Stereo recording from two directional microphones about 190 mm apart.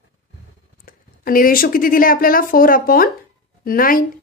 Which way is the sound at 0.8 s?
50° left (ahead or behind).